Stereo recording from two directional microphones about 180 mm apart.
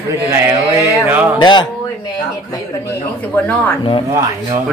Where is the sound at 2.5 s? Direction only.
10° left (ahead or behind).